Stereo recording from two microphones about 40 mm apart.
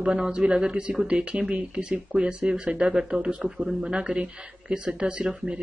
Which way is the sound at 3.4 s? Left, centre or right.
Centre.